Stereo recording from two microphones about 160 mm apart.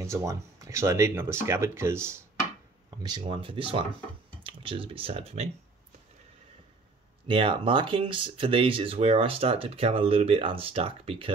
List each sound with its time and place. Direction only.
0.0 s speech: 20° right (ahead or behind)
3.0 s speech: 30° right (ahead or behind)
7.2 s speech: 35° right (ahead or behind)